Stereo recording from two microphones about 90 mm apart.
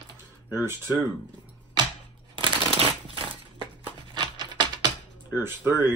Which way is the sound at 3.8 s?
60° right (ahead or behind).